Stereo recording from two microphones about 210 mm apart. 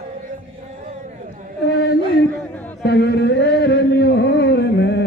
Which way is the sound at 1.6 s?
55° left (ahead or behind).